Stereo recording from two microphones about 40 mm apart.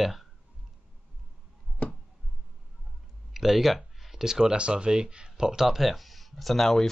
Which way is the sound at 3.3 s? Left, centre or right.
Centre.